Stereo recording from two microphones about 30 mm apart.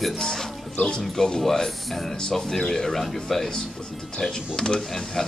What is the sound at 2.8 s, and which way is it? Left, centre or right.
Speech, centre.